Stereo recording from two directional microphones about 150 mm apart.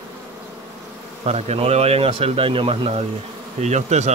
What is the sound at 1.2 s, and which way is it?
Speech, 45° right (ahead or behind).